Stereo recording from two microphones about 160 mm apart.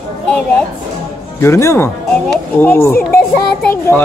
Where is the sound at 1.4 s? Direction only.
15° left (ahead or behind).